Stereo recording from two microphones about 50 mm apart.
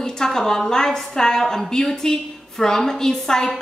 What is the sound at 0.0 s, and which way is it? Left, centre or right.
A woman's voice, centre.